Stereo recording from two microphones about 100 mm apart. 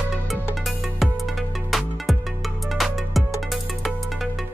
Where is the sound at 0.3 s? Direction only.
Centre (ahead or behind).